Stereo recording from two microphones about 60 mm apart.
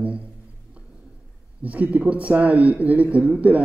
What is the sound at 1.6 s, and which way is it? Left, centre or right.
Speech, right.